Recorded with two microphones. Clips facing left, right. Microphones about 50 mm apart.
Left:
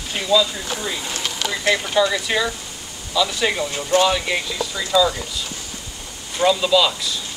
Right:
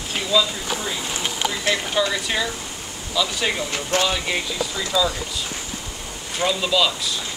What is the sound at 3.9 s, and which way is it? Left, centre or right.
Speech, right.